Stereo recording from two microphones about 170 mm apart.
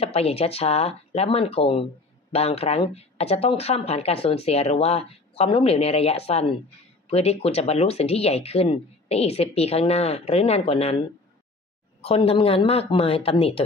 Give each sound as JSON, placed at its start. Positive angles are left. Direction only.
{"t": 0.0, "sound": "speech", "side_deg": 35}